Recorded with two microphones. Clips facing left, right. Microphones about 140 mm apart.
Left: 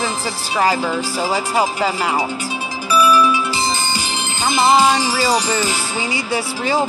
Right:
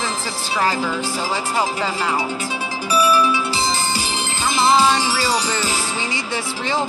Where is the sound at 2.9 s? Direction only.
35° right (ahead or behind).